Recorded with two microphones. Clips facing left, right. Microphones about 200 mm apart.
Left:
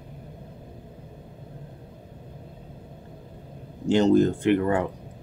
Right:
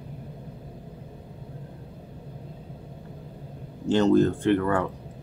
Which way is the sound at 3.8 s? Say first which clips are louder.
Left 1 dB; 15° left (ahead or behind).